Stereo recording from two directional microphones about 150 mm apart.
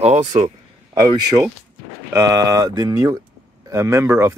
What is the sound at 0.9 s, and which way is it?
Speech, 25° right (ahead or behind).